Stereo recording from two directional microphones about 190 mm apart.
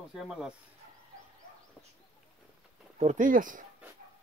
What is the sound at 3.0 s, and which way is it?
Speech, 40° right (ahead or behind).